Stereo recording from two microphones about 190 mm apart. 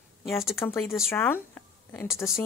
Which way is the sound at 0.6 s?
15° left (ahead or behind).